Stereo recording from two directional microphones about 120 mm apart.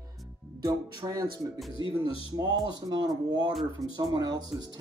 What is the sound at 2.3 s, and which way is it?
Speech, 30° right (ahead or behind).